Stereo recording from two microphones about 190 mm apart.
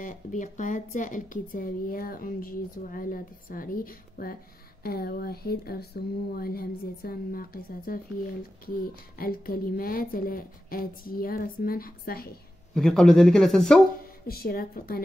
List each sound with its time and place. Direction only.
0.0 s speech: 40° left (ahead or behind)
12.7 s speech: 5° left (ahead or behind)
14.2 s speech: 55° left (ahead or behind)